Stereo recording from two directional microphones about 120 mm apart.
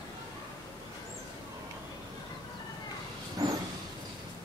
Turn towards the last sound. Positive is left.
turn(degrees=-30)  # may be behind; listen again after turning